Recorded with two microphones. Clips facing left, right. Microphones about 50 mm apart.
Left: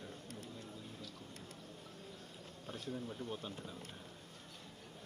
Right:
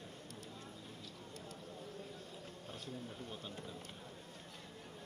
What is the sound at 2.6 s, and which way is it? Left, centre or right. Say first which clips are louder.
Speech: left 5 dB; left.